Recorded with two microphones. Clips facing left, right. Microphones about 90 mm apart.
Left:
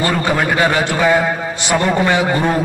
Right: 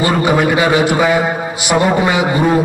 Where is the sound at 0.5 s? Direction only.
15° right (ahead or behind).